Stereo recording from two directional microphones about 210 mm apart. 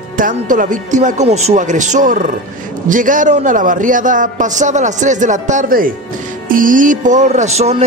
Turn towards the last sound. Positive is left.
turn(degrees=-30)  # may be behind; listen again after turning